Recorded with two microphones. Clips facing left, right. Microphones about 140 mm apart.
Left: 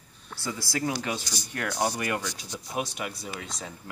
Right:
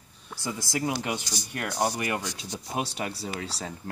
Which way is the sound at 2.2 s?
25° right (ahead or behind).